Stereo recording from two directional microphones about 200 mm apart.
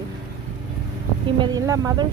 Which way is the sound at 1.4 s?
20° right (ahead or behind).